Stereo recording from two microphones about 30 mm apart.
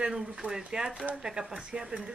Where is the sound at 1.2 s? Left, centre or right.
Right.